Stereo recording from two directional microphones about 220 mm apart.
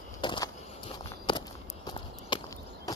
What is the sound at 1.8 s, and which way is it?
Clip-clop, 20° left (ahead or behind).